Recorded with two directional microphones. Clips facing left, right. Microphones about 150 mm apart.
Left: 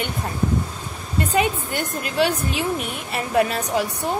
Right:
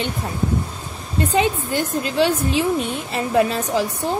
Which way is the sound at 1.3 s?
25° right (ahead or behind).